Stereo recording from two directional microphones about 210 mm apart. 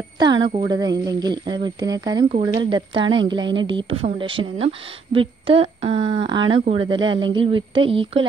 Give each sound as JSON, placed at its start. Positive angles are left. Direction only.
{"t": 0.2, "sound": "a woman's voice", "side_deg": -20}